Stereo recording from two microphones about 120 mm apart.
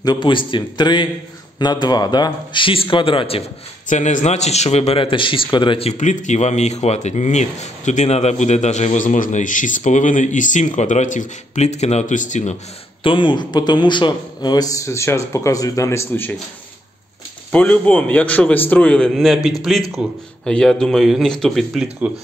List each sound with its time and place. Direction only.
0.0 s a man's voice: 40° left (ahead or behind)
3.9 s a man's voice: 85° left; by 5.9 s 45° left (ahead or behind)
5.9 s speech: 90° left
13.0 s a man's voice: 45° left (ahead or behind); by 16.3 s 20° left (ahead or behind)
17.5 s a man's voice: 15° left (ahead or behind); by 20.1 s 5° right (ahead or behind)
20.4 s speech: 5° left (ahead or behind)
22.0 s speech: 10° right (ahead or behind)